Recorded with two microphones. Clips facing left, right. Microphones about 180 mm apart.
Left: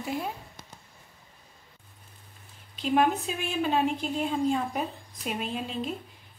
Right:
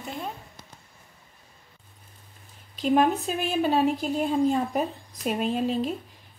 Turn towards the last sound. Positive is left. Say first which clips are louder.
# right 7 dB
turn(degrees=-40)  # may be behind; listen again after turning